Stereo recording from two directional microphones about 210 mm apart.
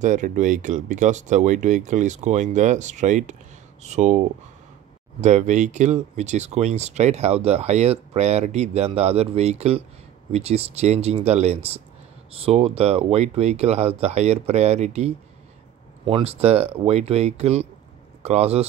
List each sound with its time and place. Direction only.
0.0 s speech: 35° right (ahead or behind)